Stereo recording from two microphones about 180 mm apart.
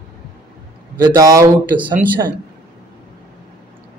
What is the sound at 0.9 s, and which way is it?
A man's voice, 20° right (ahead or behind).